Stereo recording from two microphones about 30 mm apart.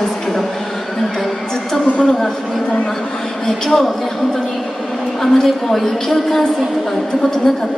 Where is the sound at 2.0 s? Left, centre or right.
Centre.